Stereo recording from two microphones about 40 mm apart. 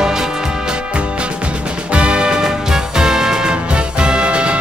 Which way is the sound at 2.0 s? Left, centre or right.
Right.